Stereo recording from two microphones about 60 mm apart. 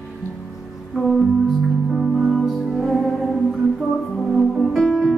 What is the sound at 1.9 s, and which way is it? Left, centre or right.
Music, centre.